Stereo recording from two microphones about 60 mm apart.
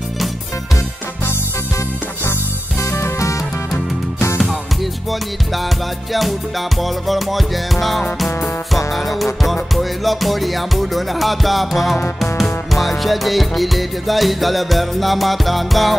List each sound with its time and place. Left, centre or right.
3.0 s music: left
6.8 s music: centre